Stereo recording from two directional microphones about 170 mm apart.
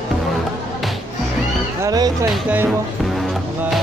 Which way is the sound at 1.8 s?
20° right (ahead or behind).